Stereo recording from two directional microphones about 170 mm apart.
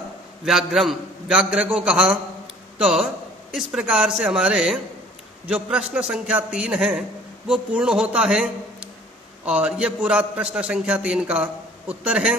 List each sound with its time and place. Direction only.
0.5 s a man's voice: 5° right (ahead or behind)